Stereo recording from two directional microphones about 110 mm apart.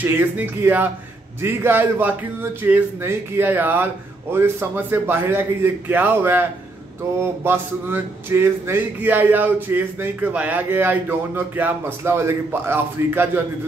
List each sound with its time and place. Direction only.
0.0 s speech: 20° right (ahead or behind)